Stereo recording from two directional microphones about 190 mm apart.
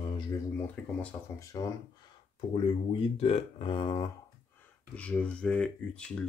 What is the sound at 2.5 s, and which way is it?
Speech, 25° left (ahead or behind).